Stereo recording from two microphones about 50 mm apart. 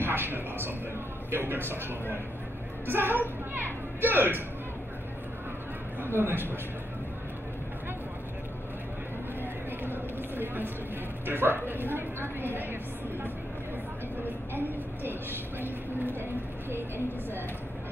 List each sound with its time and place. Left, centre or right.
0.0 s a man's voice: right
6.0 s a woman's voice: right
9.4 s a sound: right
11.2 s a woman's voice: right
15.6 s a woman's voice: right